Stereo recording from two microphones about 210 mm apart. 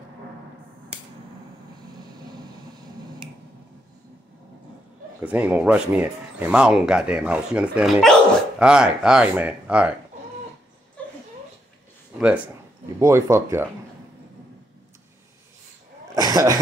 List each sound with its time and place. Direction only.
2.0 s finger snapping: 20° right (ahead or behind)
5.2 s speech: 5° right (ahead or behind)
11.0 s a sound: 5° left (ahead or behind)
13.0 s speech: 15° right (ahead or behind)
16.2 s cough: 15° right (ahead or behind)